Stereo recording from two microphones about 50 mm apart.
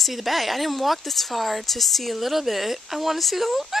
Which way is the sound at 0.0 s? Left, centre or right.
Centre.